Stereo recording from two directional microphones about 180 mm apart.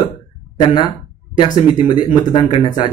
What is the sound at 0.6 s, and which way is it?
Speech, 25° left (ahead or behind).